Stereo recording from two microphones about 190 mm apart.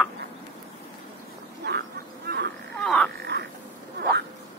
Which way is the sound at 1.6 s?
65° right (ahead or behind).